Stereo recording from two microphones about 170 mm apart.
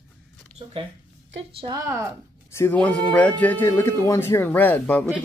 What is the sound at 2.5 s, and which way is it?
Speech, 15° left (ahead or behind).